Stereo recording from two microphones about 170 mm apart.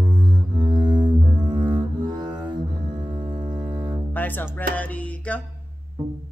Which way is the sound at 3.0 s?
30° right (ahead or behind).